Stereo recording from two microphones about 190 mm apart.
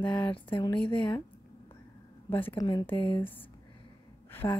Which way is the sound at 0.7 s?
5° left (ahead or behind).